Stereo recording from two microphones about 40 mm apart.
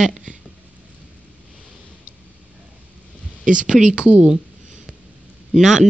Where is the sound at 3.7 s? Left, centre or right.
Right.